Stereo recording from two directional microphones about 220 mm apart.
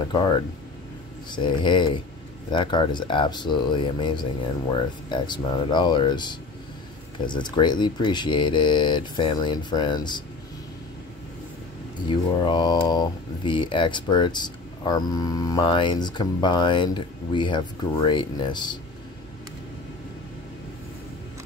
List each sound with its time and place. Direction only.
0.0 s speech: 20° left (ahead or behind)
12.1 s speech: 20° left (ahead or behind)